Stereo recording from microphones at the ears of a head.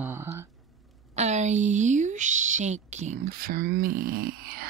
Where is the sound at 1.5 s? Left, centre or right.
Right.